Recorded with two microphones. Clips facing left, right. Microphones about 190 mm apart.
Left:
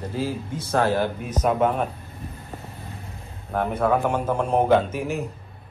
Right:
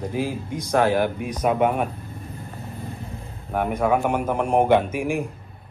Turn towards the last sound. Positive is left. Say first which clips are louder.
# right 1 dB
turn(degrees=-10)  # may be behind; listen again after turning